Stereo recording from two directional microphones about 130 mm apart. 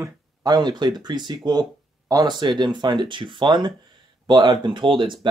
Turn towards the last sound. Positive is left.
turn(degrees=-40)  # may be behind; listen again after turning